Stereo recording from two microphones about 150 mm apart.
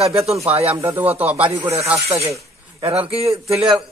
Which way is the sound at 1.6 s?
45° right (ahead or behind).